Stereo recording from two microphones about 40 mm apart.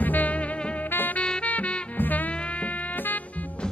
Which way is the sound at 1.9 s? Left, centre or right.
Left.